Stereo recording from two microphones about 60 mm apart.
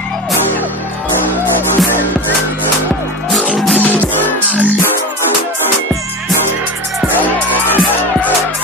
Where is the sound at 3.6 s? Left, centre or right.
Centre.